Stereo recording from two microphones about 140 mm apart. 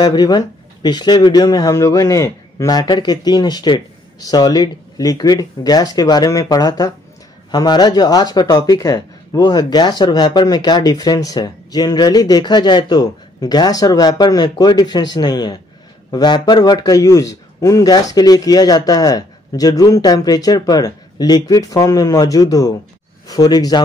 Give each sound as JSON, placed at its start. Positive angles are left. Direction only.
{"t": 0.0, "sound": "speech", "side_deg": 30}